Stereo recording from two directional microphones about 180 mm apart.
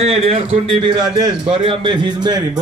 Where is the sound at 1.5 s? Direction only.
30° right (ahead or behind).